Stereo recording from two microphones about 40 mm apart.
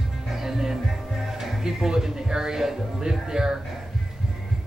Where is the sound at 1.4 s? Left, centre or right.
Centre.